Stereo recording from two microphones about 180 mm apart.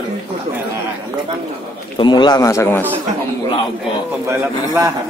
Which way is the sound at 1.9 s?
25° left (ahead or behind).